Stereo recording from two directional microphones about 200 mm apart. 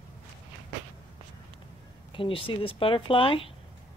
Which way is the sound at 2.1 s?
25° left (ahead or behind).